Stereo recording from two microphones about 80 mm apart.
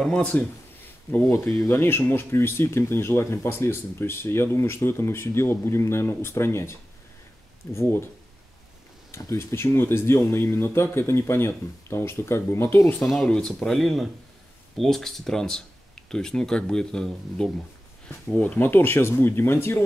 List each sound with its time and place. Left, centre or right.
0.0 s speech: centre
1.1 s speech: left
9.4 s speech: left
13.0 s speech: centre
18.6 s speech: left